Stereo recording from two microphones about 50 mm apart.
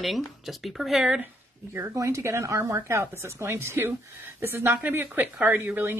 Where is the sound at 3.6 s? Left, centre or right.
Right.